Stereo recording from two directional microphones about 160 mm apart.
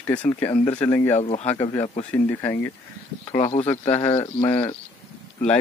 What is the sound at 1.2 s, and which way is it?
Speech, 45° left (ahead or behind).